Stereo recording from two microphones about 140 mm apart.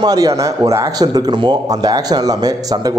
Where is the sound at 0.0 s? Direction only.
25° right (ahead or behind).